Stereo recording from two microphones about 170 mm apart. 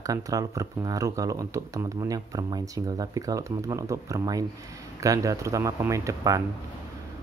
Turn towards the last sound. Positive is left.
turn(degrees=-20)  # may be behind; listen again after turning